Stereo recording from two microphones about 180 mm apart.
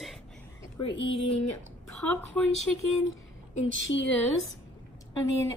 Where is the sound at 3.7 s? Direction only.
90° left.